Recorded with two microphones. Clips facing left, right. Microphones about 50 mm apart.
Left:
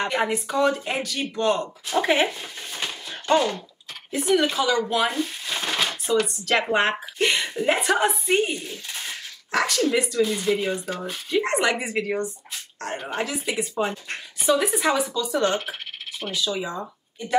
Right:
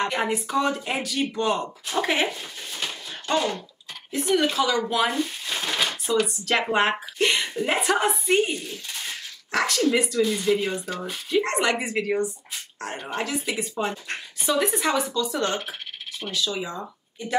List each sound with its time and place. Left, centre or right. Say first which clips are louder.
0.0 s speech: left 1 dB; centre
2.0 s a sound: left 3 dB; centre
4.1 s speech: left 1 dB; centre
16.8 s speech: even; centre